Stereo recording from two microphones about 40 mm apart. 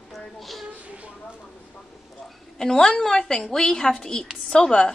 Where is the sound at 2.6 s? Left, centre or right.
Centre.